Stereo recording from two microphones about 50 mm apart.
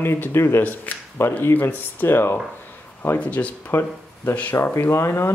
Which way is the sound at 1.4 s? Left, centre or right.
Left.